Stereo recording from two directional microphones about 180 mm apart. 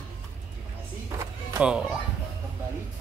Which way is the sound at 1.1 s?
15° right (ahead or behind).